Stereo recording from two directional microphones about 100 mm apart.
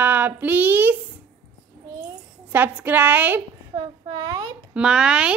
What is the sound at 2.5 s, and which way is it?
Speech, 20° right (ahead or behind).